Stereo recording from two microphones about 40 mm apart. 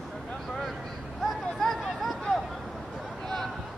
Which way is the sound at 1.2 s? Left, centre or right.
Centre.